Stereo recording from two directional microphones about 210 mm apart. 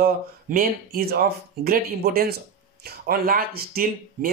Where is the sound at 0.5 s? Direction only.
45° right (ahead or behind).